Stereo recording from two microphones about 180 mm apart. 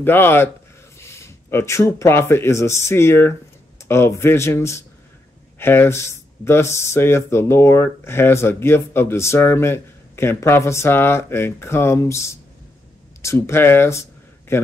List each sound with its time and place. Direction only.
0.0 s speech: 10° left (ahead or behind)